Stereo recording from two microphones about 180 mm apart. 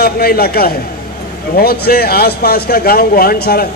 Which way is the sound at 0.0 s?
60° left (ahead or behind).